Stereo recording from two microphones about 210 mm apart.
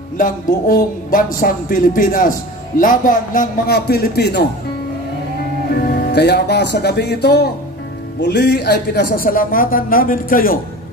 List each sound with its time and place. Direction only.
0.2 s a man's voice: 40° left (ahead or behind)
6.1 s a man's voice: 50° left (ahead or behind)